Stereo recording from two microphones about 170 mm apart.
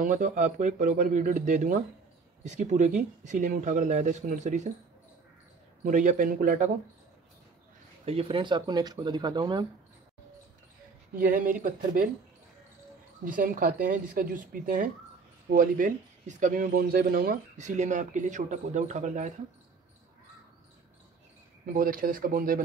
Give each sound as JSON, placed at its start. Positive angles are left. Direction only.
{"t": 0.0, "sound": "speech", "side_deg": -50}
{"t": 5.9, "sound": "speech", "side_deg": -50}
{"t": 8.0, "sound": "speech", "side_deg": -35}
{"t": 11.1, "sound": "speech", "side_deg": -55}
{"t": 13.2, "sound": "speech", "side_deg": -55}
{"t": 17.6, "sound": "speech", "side_deg": -45}
{"t": 21.6, "sound": "speech", "side_deg": -55}